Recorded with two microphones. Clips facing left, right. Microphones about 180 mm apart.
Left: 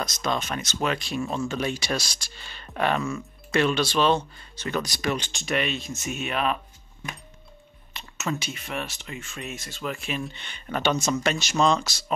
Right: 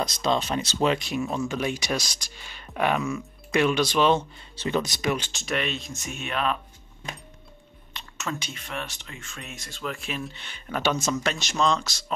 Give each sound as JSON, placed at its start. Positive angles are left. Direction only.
{"t": 0.0, "sound": "speech", "side_deg": -30}
{"t": 5.1, "sound": "speech", "side_deg": 0}
{"t": 7.9, "sound": "speech", "side_deg": 5}